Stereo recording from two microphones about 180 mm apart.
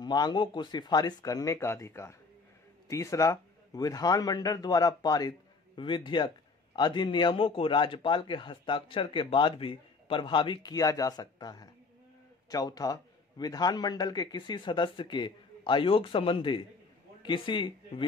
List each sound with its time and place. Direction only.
0.0 s a man's voice: 25° left (ahead or behind)